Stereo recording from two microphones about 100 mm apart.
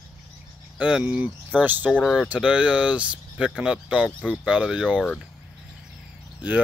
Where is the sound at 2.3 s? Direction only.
10° right (ahead or behind).